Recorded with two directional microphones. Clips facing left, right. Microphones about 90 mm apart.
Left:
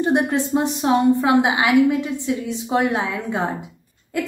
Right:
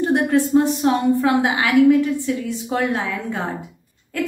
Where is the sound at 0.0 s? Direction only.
20° left (ahead or behind).